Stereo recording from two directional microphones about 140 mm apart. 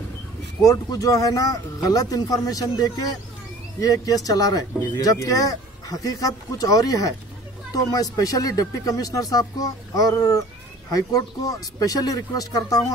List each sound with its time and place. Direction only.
0.7 s speech: 25° left (ahead or behind)